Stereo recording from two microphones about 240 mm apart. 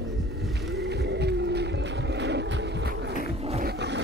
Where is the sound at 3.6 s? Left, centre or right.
Right.